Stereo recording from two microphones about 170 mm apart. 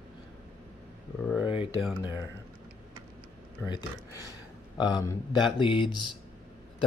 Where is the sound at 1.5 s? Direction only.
30° left (ahead or behind).